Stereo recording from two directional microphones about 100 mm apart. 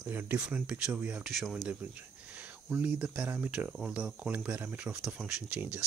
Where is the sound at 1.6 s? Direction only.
15° right (ahead or behind).